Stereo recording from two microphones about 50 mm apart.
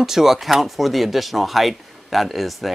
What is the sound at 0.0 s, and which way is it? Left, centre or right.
Speech, centre.